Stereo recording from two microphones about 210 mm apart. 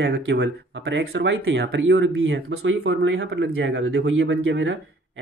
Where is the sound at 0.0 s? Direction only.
55° right (ahead or behind).